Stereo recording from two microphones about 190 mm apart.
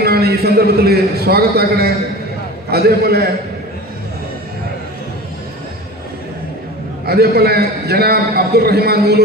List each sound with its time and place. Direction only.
0.0 s a man's voice: 55° right (ahead or behind)
7.1 s a man's voice: 55° right (ahead or behind)